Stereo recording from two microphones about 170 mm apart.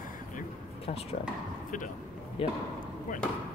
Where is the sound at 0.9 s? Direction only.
40° left (ahead or behind).